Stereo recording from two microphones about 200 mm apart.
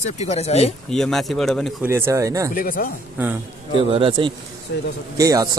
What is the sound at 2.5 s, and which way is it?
Speech, 45° left (ahead or behind).